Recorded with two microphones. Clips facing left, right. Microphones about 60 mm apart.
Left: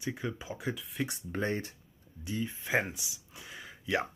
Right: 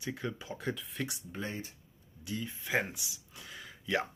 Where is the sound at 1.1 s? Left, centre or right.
Left.